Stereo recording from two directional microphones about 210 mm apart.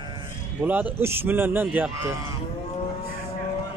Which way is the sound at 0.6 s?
5° right (ahead or behind).